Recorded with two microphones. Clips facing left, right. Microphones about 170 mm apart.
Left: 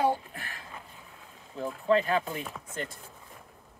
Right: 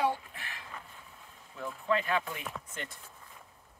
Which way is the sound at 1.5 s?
35° left (ahead or behind).